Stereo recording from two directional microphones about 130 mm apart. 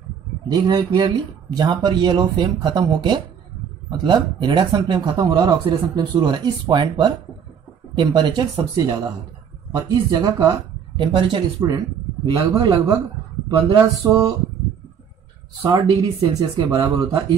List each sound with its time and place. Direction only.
0.5 s speech: 35° right (ahead or behind)
15.6 s speech: 30° right (ahead or behind)